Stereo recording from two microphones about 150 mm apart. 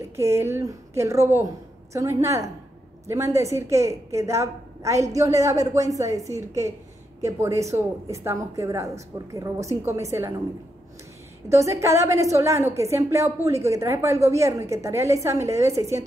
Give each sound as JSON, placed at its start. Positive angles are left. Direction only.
{"t": 0.0, "sound": "a woman's voice", "side_deg": -20}
{"t": 11.4, "sound": "a woman's voice", "side_deg": -20}